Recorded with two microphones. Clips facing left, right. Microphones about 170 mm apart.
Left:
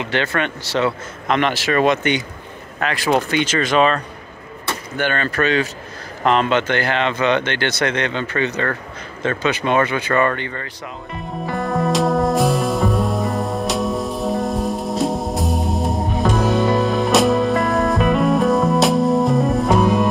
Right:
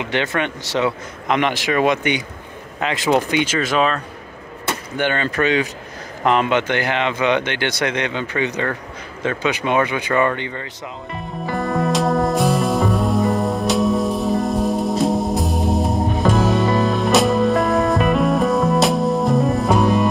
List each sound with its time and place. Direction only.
0.0 s speech: 15° right (ahead or behind)
4.6 s speech: 20° right (ahead or behind)
11.4 s music: centre (ahead or behind)